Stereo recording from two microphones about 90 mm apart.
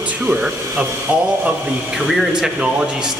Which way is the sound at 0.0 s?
15° right (ahead or behind).